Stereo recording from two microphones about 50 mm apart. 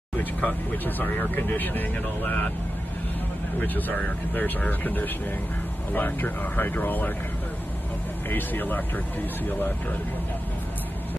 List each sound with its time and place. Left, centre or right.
0.2 s speech: left
0.8 s speech: left
3.6 s speech: left
8.3 s speech: left